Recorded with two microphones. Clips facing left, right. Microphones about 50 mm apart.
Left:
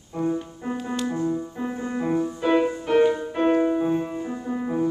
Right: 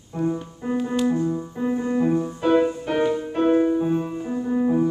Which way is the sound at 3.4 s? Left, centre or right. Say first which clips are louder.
Right 2 dB; centre.